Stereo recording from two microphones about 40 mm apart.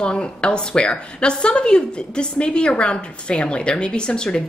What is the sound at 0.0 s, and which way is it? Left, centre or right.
A woman's voice, left.